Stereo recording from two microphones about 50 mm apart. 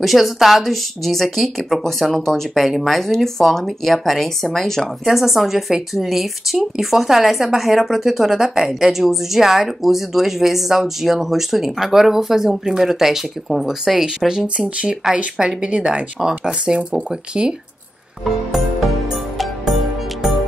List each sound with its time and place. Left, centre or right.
0.0 s a woman's voice: centre
5.0 s a woman's voice: centre; by 16.0 s right
16.2 s speech: centre
18.2 s music: centre